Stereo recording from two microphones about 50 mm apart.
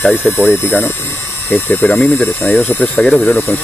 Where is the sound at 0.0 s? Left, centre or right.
Left.